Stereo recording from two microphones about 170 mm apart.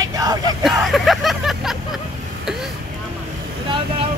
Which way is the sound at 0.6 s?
Centre (ahead or behind).